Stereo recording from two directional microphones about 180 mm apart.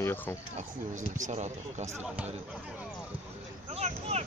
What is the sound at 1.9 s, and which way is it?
Speech, 10° right (ahead or behind).